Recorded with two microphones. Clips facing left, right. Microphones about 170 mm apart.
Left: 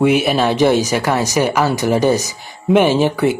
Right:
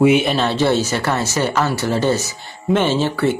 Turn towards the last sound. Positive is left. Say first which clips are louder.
# left 3 dB
turn(degrees=15)  # may be behind; listen again after turning